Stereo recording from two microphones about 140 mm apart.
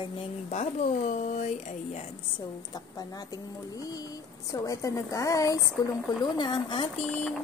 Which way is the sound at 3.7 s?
25° left (ahead or behind).